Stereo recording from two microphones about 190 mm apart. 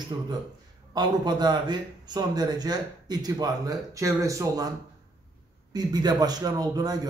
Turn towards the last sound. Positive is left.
turn(degrees=-20)  # may be behind; listen again after turning